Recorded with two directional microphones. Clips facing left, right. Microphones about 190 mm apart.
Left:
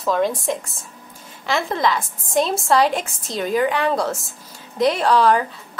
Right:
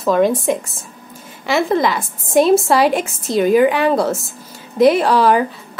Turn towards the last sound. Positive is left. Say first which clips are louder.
# right 3 dB
turn(degrees=-5)  # may be behind; listen again after turning